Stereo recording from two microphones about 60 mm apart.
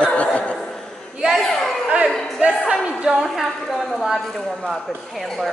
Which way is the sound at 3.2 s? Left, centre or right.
Centre.